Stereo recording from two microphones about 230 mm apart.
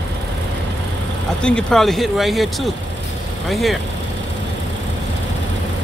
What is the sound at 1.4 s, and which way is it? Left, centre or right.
Speech, centre.